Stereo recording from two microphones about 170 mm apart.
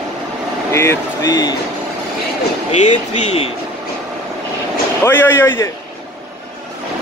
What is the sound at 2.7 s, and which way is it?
Speech, 40° left (ahead or behind).